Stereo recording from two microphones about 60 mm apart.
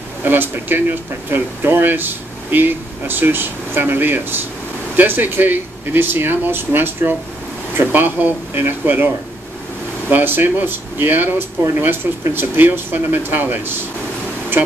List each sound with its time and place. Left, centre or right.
0.2 s speech: right
14.5 s music: right